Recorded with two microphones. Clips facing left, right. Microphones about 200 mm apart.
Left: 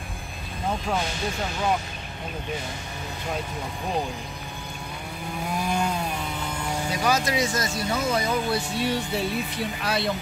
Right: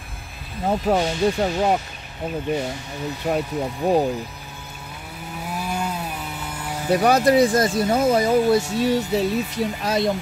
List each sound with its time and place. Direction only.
0.7 s speech: 40° right (ahead or behind)
3.3 s speech: 60° right (ahead or behind)
5.5 s chainsaw: 5° right (ahead or behind)
6.9 s speech: 60° right (ahead or behind); by 10.1 s 40° right (ahead or behind)